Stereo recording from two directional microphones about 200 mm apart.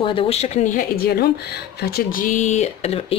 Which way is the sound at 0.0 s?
30° left (ahead or behind).